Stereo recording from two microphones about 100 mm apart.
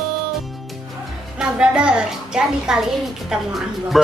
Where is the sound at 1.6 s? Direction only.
10° right (ahead or behind).